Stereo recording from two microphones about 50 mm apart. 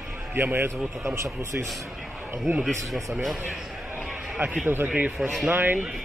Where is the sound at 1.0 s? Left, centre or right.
Right.